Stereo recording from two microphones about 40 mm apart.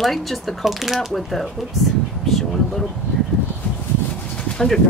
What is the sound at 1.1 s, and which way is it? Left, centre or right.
Speech, centre.